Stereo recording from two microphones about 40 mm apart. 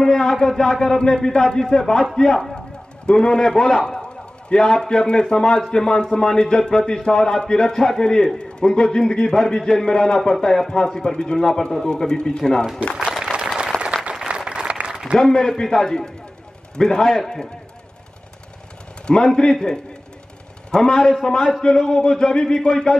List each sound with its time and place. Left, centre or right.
0.0 s a man's voice: centre
3.1 s a man's voice: centre
13.2 s a sound: right
13.7 s applause: left
14.1 s applause: right
15.3 s a man's voice: centre
19.3 s a man's voice: centre